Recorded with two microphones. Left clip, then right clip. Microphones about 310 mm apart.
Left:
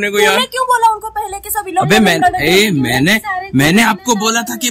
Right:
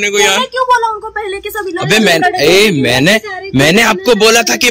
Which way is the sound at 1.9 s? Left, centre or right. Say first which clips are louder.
Right 2 dB; centre.